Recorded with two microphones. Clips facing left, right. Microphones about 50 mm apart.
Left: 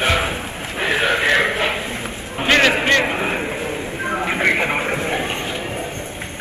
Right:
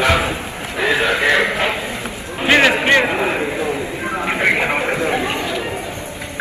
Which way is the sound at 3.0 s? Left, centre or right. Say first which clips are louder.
Right 3 dB; right.